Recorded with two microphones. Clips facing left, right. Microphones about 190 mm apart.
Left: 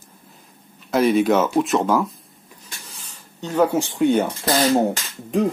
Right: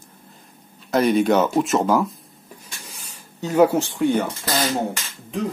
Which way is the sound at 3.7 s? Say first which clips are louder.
Left 2 dB; 20° left (ahead or behind).